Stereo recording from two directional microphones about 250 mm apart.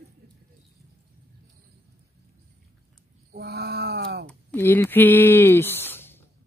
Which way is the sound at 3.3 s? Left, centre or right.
Right.